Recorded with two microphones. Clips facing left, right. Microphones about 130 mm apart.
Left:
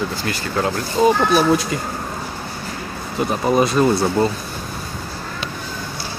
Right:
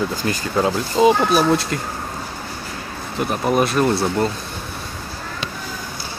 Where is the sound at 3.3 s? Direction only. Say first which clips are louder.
Left 1 dB; centre (ahead or behind).